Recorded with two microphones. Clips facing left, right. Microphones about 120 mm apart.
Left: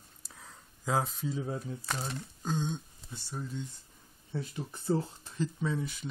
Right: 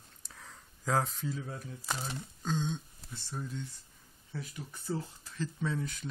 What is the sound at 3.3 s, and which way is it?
Speech, centre (ahead or behind).